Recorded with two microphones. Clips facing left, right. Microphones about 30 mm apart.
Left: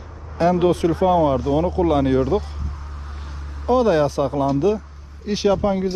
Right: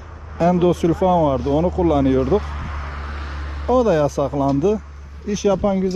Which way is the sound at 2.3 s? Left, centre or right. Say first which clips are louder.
Right 3 dB; right.